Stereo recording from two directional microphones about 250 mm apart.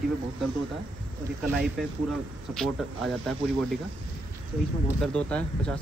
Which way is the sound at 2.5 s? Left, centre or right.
Centre.